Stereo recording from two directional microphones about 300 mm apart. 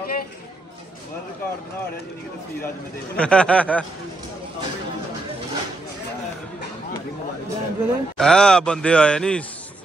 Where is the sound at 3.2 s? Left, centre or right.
Centre.